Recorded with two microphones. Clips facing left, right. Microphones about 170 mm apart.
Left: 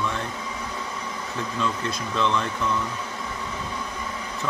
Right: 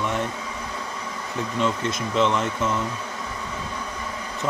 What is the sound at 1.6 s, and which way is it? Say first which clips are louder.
Speech: right 4 dB; 20° right (ahead or behind).